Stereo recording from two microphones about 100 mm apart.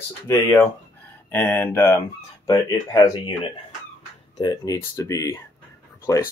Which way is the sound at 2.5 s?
40° left (ahead or behind).